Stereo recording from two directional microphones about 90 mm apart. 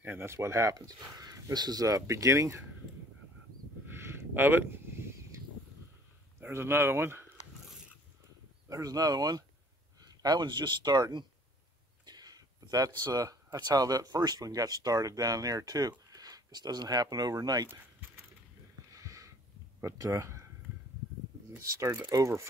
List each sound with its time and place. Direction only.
0.0 s speech: 25° right (ahead or behind)
3.9 s a sound: 25° right (ahead or behind)
6.4 s speech: 25° right (ahead or behind)
8.6 s speech: 40° right (ahead or behind)
18.9 s a sound: 35° right (ahead or behind)
19.8 s speech: 35° right (ahead or behind)
22.1 s speech: 35° right (ahead or behind)